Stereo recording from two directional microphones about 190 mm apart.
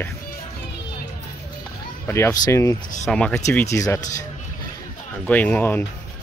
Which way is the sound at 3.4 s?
15° left (ahead or behind).